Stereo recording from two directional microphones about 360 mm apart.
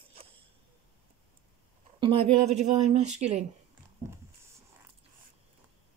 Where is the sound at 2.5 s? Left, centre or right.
Centre.